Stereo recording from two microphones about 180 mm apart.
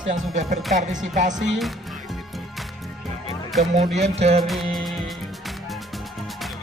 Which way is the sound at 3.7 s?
35° right (ahead or behind).